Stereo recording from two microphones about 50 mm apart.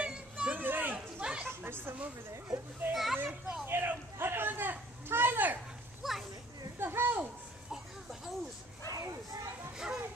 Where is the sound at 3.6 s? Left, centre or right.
Right.